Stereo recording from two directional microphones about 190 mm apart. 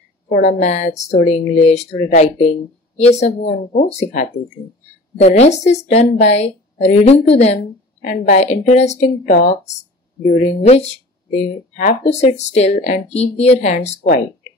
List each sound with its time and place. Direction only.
0.3 s a woman's voice: 40° left (ahead or behind)